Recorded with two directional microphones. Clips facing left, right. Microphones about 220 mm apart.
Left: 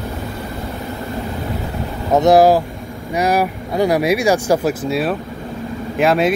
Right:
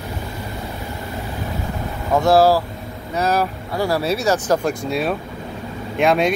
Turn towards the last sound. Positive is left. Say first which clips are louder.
# left 2 dB
turn(degrees=5)  # may be behind; listen again after turning